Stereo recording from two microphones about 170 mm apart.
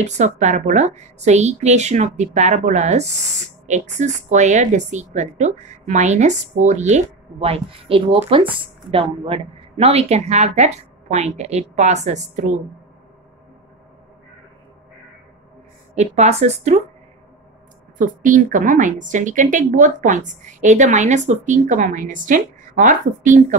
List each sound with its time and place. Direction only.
0.0 s a woman's voice: 40° right (ahead or behind)
15.9 s a woman's voice: 40° right (ahead or behind)
17.9 s a woman's voice: 50° right (ahead or behind)